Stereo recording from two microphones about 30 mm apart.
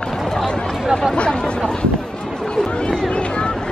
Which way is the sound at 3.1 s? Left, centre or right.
Left.